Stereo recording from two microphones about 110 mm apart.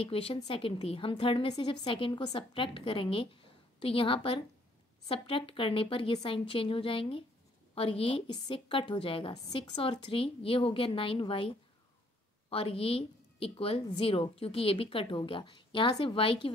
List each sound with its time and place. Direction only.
0.0 s a woman's voice: 60° left (ahead or behind)